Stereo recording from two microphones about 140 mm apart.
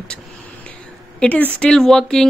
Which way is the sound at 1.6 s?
5° left (ahead or behind).